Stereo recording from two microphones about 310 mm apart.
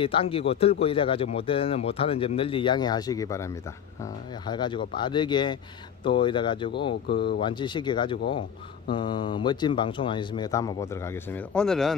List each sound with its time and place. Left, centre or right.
0.0 s speech: centre